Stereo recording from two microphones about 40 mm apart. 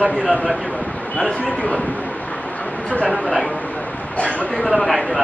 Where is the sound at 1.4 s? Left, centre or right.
Left.